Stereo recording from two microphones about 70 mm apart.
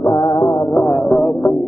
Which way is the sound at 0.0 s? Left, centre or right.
Left.